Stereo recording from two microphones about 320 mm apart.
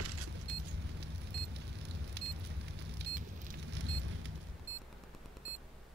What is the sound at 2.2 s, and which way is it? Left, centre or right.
Vehicle, right.